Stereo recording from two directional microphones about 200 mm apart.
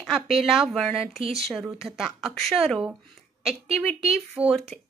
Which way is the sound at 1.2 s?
30° right (ahead or behind).